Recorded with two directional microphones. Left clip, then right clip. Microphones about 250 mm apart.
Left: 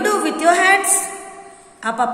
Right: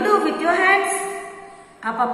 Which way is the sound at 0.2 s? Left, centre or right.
Left.